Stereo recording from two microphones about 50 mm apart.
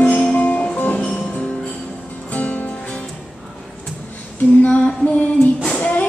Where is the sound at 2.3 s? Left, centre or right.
Left.